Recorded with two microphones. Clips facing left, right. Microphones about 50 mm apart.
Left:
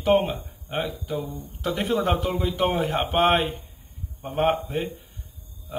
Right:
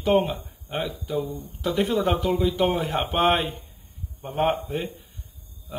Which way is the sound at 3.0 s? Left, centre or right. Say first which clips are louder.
Left 1 dB; centre.